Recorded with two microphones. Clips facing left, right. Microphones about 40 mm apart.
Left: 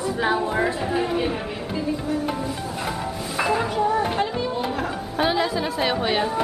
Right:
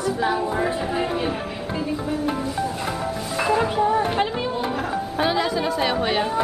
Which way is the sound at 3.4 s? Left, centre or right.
Centre.